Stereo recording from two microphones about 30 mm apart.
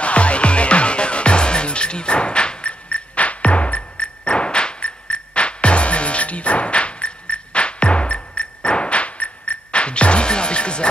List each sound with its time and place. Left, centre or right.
0.0 s music: left